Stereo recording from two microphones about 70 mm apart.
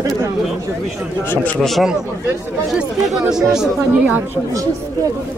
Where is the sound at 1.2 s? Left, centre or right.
Left.